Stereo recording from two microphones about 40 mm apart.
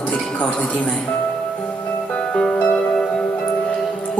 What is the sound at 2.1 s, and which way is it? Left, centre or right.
Music, left.